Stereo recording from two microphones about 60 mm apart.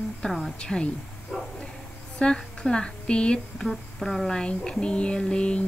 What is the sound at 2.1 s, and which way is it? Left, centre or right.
A woman's voice, centre.